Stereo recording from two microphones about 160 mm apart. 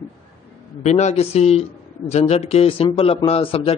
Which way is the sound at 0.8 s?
45° left (ahead or behind).